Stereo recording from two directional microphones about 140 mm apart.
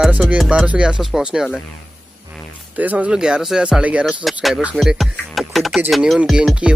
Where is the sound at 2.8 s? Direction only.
10° right (ahead or behind).